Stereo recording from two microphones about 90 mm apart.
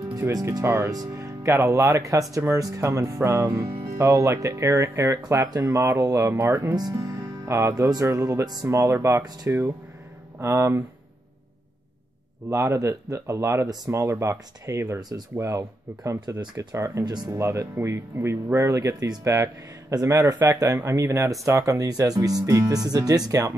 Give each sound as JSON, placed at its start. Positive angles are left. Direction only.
{"t": 0.5, "sound": "speech", "side_deg": -30}
{"t": 6.3, "sound": "speech", "side_deg": -20}
{"t": 7.1, "sound": "music", "side_deg": -30}
{"t": 7.9, "sound": "speech", "side_deg": -35}
{"t": 12.4, "sound": "speech", "side_deg": -35}
{"t": 15.3, "sound": "speech", "side_deg": -35}